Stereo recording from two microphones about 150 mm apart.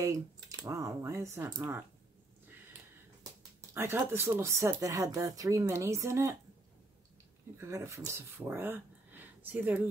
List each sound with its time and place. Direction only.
0.0 s speech: 20° right (ahead or behind)
3.7 s speech: 15° right (ahead or behind)
7.5 s speech: 20° right (ahead or behind)